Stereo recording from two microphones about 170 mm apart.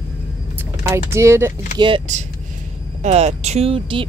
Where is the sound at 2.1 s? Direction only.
45° right (ahead or behind).